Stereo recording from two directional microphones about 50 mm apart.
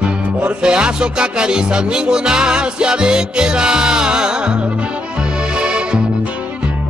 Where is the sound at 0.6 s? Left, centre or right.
Centre.